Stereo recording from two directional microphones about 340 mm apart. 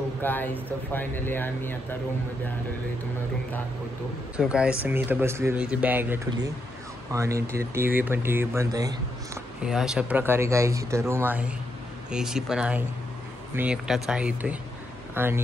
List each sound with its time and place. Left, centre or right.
0.2 s speech: centre
4.4 s speech: centre